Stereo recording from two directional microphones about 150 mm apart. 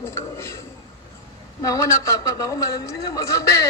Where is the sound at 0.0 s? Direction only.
20° left (ahead or behind).